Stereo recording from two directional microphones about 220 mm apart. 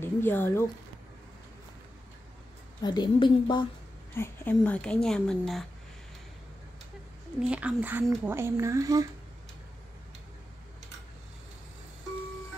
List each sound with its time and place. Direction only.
0.0 s speech: 10° left (ahead or behind)
2.8 s a woman's voice: 20° left (ahead or behind)
4.1 s speech: 10° left (ahead or behind)
7.3 s speech: 5° right (ahead or behind)